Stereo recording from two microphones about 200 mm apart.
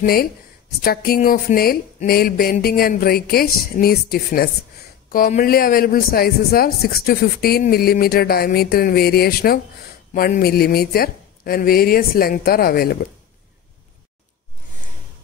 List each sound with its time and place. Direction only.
0.0 s speech: 50° left (ahead or behind)